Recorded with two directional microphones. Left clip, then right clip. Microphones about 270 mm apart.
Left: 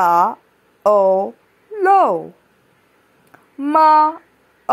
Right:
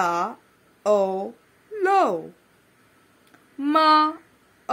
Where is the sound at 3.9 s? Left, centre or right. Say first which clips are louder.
Left 6 dB; centre.